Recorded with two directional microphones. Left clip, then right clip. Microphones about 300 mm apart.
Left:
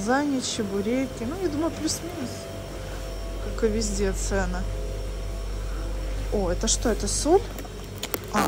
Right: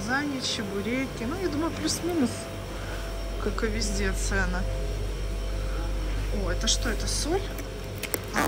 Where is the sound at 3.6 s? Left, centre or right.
Centre.